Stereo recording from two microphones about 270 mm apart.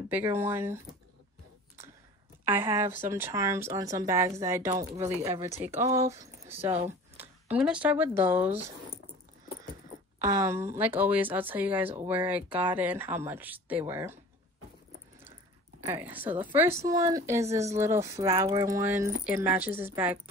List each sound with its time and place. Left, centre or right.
0.1 s a woman's voice: centre
2.4 s a woman's voice: centre
10.3 s a woman's voice: centre
15.8 s a woman's voice: centre